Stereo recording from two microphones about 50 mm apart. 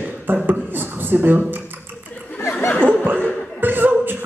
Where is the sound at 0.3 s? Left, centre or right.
Right.